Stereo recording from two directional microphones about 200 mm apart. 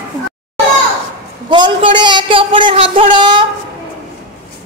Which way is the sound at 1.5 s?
25° right (ahead or behind).